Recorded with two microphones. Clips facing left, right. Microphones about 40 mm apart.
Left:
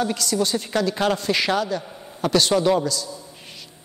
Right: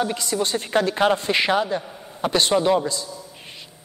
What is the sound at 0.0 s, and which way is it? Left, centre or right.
A man's voice, right.